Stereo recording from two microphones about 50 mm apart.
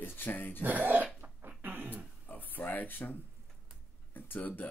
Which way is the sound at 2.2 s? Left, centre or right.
Left.